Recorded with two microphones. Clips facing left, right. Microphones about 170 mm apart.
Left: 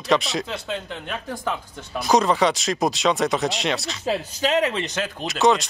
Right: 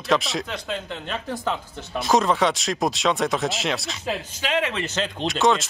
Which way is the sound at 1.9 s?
Centre (ahead or behind).